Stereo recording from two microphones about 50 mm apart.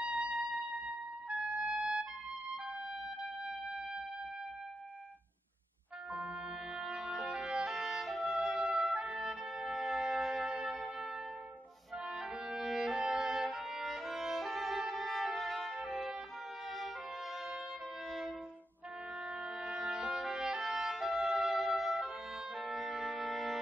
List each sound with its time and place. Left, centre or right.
0.0 s music: right
3.4 s music: centre
6.8 s music: centre
8.9 s trumpet: centre
12.1 s music: centre
19.6 s music: centre